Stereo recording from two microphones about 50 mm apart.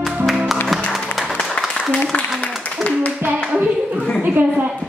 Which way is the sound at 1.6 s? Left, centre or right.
Left.